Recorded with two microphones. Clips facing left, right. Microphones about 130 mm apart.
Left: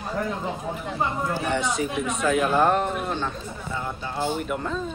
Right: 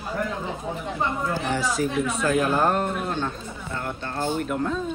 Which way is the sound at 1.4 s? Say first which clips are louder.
Even; centre (ahead or behind).